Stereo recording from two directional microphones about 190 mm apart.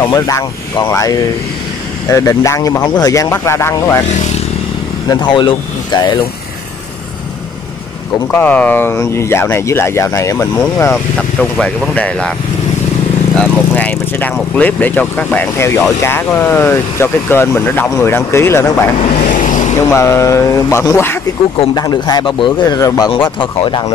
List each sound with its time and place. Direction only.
0.0 s speech: 20° left (ahead or behind)
5.0 s speech: 25° left (ahead or behind)
8.3 s speech: 10° left (ahead or behind)
13.4 s speech: 10° left (ahead or behind)
18.9 s vehicle: 45° left (ahead or behind)
19.9 s speech: 15° left (ahead or behind)